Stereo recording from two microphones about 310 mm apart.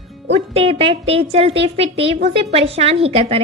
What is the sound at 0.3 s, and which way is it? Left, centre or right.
A woman's voice, centre.